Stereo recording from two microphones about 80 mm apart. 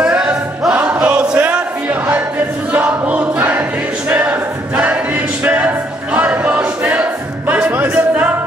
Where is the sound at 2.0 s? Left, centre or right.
Centre.